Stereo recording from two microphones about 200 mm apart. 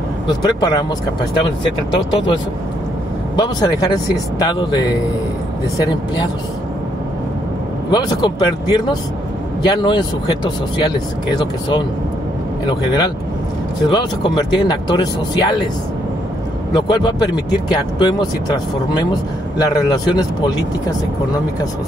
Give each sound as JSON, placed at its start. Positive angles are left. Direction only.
{"t": 3.3, "sound": "speech", "side_deg": 20}
{"t": 5.8, "sound": "speech", "side_deg": 20}
{"t": 7.9, "sound": "speech", "side_deg": 20}
{"t": 12.6, "sound": "speech", "side_deg": 20}
{"t": 16.7, "sound": "speech", "side_deg": 20}